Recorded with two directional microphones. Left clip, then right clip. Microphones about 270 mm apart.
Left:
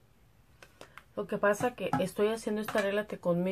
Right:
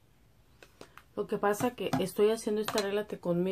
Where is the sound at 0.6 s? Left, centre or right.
Centre.